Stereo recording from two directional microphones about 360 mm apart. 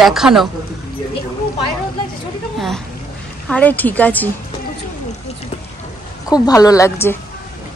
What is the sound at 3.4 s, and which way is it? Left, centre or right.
Speech, centre.